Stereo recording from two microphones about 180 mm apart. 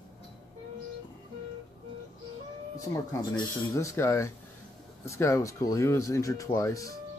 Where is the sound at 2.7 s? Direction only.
20° left (ahead or behind).